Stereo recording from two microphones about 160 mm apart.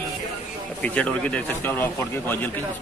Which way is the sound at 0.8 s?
10° left (ahead or behind).